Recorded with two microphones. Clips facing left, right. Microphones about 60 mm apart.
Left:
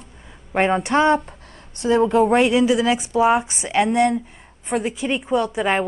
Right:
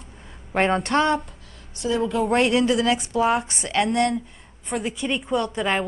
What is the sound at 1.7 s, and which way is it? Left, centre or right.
Speech, left.